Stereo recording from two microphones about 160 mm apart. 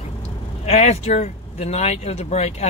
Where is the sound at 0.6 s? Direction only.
40° left (ahead or behind).